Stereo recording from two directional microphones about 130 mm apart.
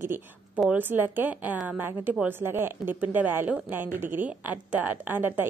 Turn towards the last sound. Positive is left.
turn(degrees=-15)  # may be behind; listen again after turning